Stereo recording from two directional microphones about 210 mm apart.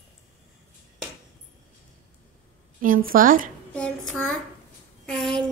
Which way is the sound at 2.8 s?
40° right (ahead or behind).